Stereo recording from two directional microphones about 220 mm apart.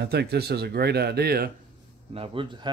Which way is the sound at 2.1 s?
25° right (ahead or behind).